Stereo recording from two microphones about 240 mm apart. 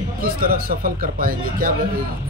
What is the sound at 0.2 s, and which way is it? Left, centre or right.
Speech, right.